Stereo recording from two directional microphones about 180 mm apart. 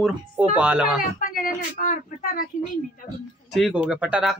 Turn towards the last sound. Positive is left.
turn(degrees=-5)  # may be behind; listen again after turning